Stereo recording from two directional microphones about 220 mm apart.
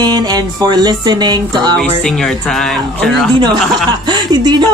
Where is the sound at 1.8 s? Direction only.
Centre (ahead or behind).